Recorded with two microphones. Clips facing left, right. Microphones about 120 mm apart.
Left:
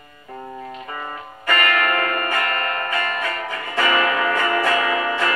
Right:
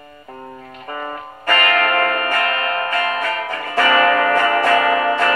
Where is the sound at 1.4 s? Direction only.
40° right (ahead or behind).